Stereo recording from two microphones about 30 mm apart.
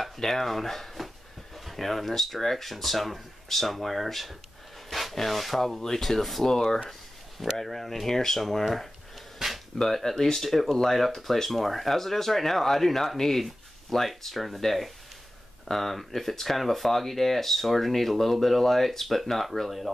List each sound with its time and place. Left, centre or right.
0.2 s speech: centre
4.8 s a sound: centre
5.1 s rub: centre
5.8 s speech: centre
6.4 s speech: centre
9.8 s speech: centre